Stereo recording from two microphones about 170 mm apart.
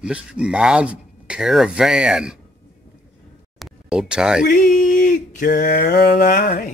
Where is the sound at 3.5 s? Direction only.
5° right (ahead or behind).